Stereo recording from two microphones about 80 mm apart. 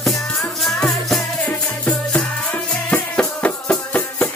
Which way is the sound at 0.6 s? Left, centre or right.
Centre.